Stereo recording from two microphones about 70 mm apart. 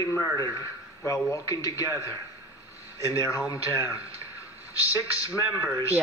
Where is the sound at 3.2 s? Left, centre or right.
Left.